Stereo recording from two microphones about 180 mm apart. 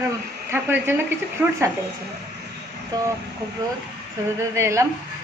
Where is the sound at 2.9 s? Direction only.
20° right (ahead or behind).